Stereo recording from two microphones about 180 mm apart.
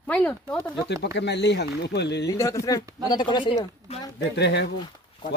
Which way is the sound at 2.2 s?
15° left (ahead or behind).